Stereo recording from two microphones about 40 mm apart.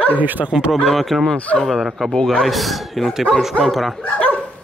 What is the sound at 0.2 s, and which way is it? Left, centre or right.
Speech, right.